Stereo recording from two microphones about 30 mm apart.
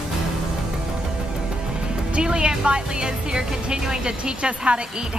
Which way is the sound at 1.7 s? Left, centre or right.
Right.